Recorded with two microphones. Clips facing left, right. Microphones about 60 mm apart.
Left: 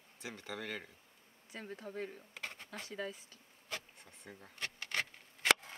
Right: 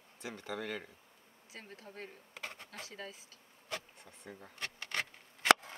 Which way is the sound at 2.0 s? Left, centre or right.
Centre.